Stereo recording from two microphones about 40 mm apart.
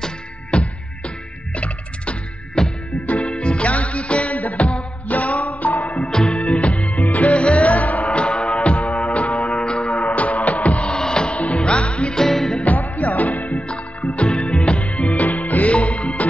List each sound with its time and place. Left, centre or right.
0.5 s music: left
2.6 s music: centre; by 6.1 s left
6.1 s music: centre
6.5 s music: left
10.9 s music: centre
11.3 s music: left
12.2 s music: centre
12.6 s music: left
15.1 s music: left
15.7 s music: left